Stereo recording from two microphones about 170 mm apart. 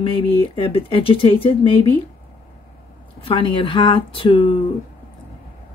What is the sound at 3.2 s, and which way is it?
Speech, 30° left (ahead or behind).